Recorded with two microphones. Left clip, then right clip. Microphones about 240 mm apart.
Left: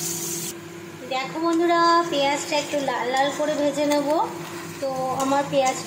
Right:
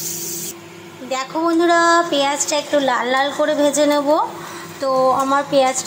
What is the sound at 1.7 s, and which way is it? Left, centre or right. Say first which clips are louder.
A woman's voice: right 4 dB; centre.